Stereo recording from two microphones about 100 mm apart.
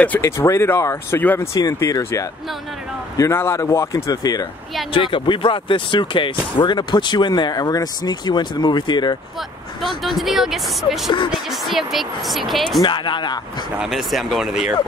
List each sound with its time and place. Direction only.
0.2 s speech: 25° left (ahead or behind)
1.2 s speech: 20° left (ahead or behind)
1.5 s speech: 30° left (ahead or behind)
4.9 s speech: 55° left (ahead or behind)
9.8 s speech: centre (ahead or behind)
12.8 s speech: 50° left (ahead or behind)
13.7 s speech: centre (ahead or behind)